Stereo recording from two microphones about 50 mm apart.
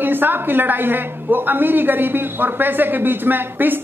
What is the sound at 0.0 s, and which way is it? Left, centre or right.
A woman's voice, right.